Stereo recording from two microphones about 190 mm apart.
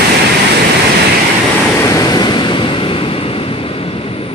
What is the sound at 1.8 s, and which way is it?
Vehicle, 20° left (ahead or behind).